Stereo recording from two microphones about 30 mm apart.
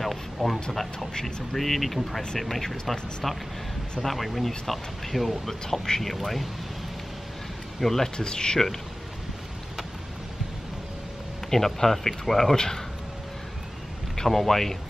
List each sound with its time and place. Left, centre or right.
0.0 s a sound: centre
1.2 s speech: centre
4.0 s speech: centre
7.8 s speech: centre
8.2 s speech: left
11.5 s speech: centre
12.5 s speech: centre
14.1 s speech: centre